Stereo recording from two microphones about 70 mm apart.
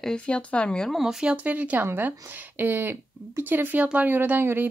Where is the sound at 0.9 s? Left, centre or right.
Centre.